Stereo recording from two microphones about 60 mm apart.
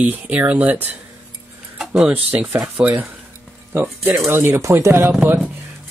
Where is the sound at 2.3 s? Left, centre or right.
Right.